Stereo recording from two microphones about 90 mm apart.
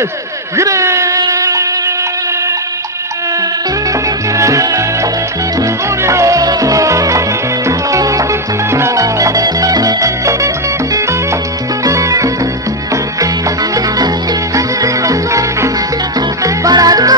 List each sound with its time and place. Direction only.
0.6 s a sound: 35° right (ahead or behind)
4.4 s music: 35° right (ahead or behind)
9.0 s music: 45° right (ahead or behind)
11.8 s music: 40° right (ahead or behind)
13.7 s music: 45° right (ahead or behind)